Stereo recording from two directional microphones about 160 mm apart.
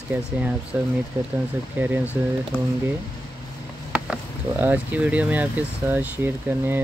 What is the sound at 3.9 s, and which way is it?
Speech, 5° right (ahead or behind).